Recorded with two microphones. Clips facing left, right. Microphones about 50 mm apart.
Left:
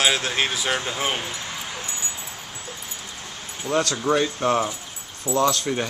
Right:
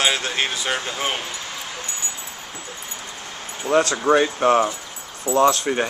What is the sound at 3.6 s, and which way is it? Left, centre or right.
Speech, right.